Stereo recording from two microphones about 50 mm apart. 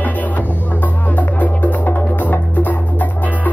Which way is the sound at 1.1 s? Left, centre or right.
Left.